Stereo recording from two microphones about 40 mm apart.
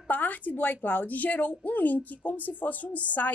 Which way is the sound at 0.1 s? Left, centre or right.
Left.